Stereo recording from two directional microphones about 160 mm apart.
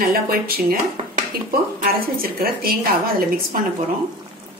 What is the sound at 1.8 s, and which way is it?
Speech, 65° right (ahead or behind).